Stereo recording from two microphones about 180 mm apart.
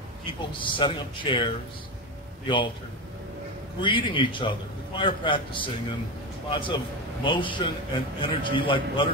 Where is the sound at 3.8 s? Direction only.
30° left (ahead or behind).